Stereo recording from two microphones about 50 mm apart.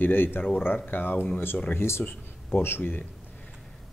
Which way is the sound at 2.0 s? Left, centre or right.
Left.